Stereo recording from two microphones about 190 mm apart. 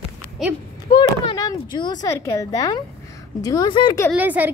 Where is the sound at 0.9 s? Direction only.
25° left (ahead or behind).